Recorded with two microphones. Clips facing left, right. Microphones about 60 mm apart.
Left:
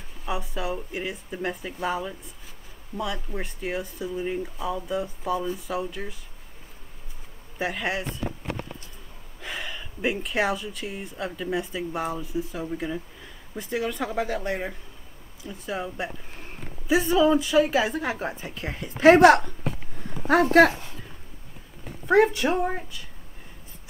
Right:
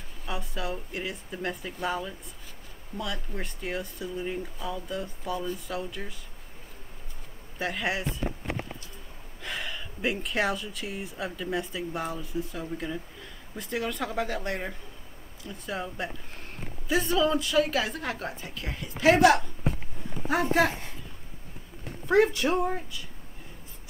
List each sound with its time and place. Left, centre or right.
0.2 s speech: centre
7.5 s speech: centre
8.0 s speech: left
9.4 s speech: centre
18.1 s a woman's voice: left
19.1 s a woman's voice: left
22.0 s speech: centre